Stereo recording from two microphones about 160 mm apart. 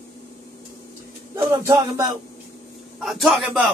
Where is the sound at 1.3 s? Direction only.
20° right (ahead or behind).